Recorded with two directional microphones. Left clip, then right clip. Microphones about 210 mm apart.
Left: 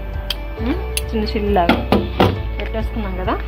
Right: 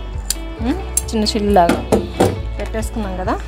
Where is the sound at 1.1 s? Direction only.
50° right (ahead or behind).